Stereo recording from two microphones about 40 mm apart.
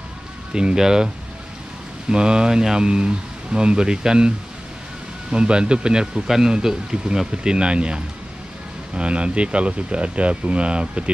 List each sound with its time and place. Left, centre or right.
0.5 s speech: right
5.3 s speech: right